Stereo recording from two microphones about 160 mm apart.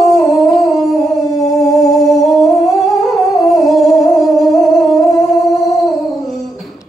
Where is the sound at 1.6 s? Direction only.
Centre (ahead or behind).